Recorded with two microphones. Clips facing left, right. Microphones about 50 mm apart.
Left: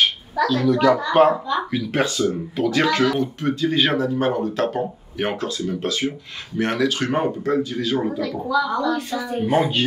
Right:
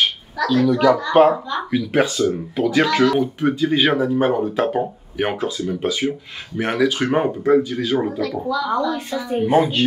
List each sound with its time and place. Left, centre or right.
0.5 s speech: centre
8.2 s a woman's voice: centre
8.6 s speech: centre
9.4 s speech: centre